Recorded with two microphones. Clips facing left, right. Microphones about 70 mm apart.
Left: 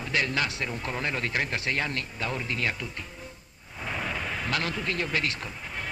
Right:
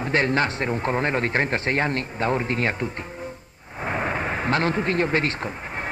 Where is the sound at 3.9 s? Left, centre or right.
Right.